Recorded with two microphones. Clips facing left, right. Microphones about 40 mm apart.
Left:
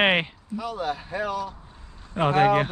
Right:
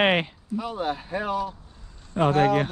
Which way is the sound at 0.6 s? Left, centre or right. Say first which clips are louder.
Even; right.